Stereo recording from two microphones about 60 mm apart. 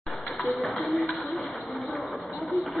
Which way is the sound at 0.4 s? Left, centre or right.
Centre.